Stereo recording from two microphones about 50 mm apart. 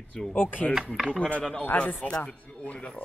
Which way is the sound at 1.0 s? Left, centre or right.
Centre.